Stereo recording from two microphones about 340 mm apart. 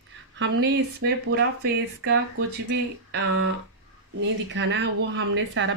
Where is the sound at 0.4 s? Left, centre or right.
Right.